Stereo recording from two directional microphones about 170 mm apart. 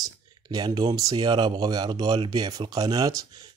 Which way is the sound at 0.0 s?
25° right (ahead or behind).